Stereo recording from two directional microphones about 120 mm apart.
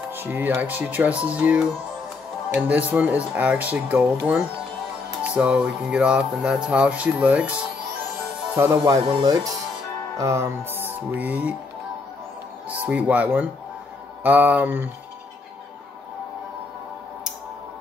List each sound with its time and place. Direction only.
0.1 s speech: 15° right (ahead or behind)
2.7 s speech: 15° right (ahead or behind)
8.8 s speech: 35° right (ahead or behind)
10.1 s music: 25° right (ahead or behind)
10.9 s music: 15° right (ahead or behind)
12.6 s speech: 10° right (ahead or behind)